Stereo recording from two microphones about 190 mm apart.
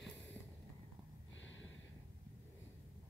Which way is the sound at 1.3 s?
80° left.